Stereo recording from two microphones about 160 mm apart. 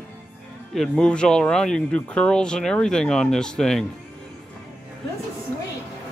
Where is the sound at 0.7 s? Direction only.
5° left (ahead or behind).